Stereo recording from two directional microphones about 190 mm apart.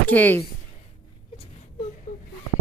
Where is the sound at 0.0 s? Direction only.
10° left (ahead or behind).